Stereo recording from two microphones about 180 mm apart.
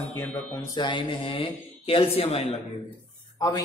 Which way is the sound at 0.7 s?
25° left (ahead or behind).